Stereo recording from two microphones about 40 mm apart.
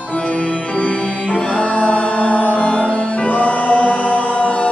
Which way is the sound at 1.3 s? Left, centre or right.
Left.